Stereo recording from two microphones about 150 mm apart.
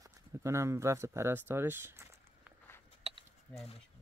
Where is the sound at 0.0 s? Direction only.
20° right (ahead or behind).